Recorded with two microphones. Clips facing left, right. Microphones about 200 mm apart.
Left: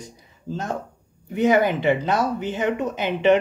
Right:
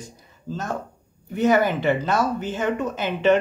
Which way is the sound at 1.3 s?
20° left (ahead or behind).